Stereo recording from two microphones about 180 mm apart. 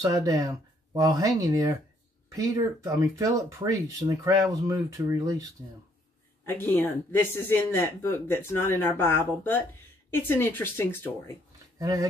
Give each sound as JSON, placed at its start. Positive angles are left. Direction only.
{"t": 0.0, "sound": "speech", "side_deg": -20}
{"t": 6.4, "sound": "speech", "side_deg": 10}
{"t": 11.8, "sound": "speech", "side_deg": -20}